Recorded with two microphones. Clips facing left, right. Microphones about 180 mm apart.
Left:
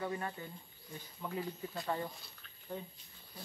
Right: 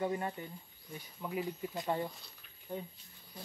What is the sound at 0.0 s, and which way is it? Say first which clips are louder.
Speech: right 4 dB; 20° right (ahead or behind).